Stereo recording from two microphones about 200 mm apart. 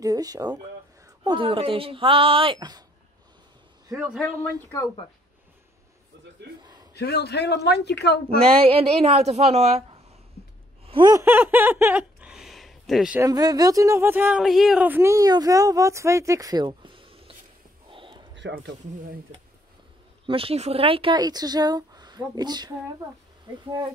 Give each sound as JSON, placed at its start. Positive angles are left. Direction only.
{"t": 0.0, "sound": "a woman's voice", "side_deg": -20}
{"t": 3.9, "sound": "a man's voice", "side_deg": -5}
{"t": 6.9, "sound": "speech", "side_deg": 55}
{"t": 8.5, "sound": "speech", "side_deg": -30}
{"t": 10.9, "sound": "a sound", "side_deg": -20}
{"t": 13.2, "sound": "speech", "side_deg": -20}
{"t": 17.8, "sound": "a sound", "side_deg": -25}
{"t": 18.3, "sound": "speech", "side_deg": -60}
{"t": 20.2, "sound": "speech", "side_deg": -30}